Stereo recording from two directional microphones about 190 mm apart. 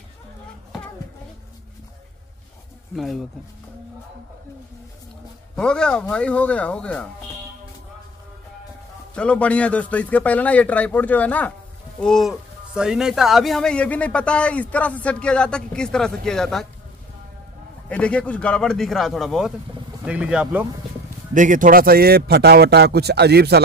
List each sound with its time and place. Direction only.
3.0 s a man's voice: centre (ahead or behind)
5.6 s a man's voice: 5° left (ahead or behind)
9.1 s a man's voice: 5° left (ahead or behind)
17.8 s a man's voice: 5° left (ahead or behind)
21.3 s a man's voice: 45° right (ahead or behind); by 23.6 s 60° right (ahead or behind)